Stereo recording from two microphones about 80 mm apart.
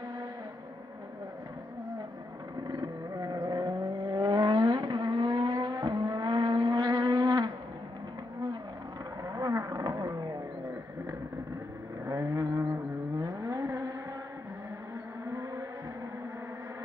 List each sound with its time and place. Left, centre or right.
2.6 s vehicle: right
5.5 s vehicle: right
9.3 s wild animals: right
12.1 s vehicle: right